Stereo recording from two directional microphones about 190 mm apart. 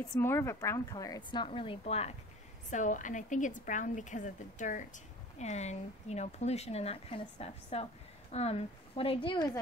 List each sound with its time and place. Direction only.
0.1 s a woman's voice: 15° left (ahead or behind)